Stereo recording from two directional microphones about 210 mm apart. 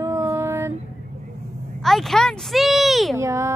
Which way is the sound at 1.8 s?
Centre (ahead or behind).